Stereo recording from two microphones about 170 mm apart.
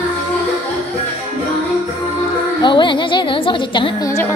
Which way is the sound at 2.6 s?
30° left (ahead or behind).